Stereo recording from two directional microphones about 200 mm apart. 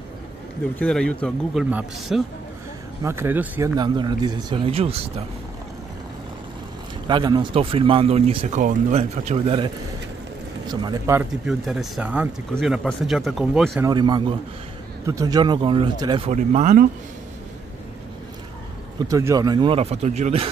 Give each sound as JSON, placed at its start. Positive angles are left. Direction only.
{"t": 0.7, "sound": "speech", "side_deg": 5}
{"t": 3.0, "sound": "speech", "side_deg": -15}
{"t": 3.7, "sound": "speech", "side_deg": -20}
{"t": 7.1, "sound": "speech", "side_deg": -25}
{"t": 10.7, "sound": "speech", "side_deg": -20}
{"t": 11.4, "sound": "speech", "side_deg": 0}
{"t": 13.8, "sound": "speech", "side_deg": -20}
{"t": 16.3, "sound": "speech", "side_deg": -35}
{"t": 19.0, "sound": "speech", "side_deg": -15}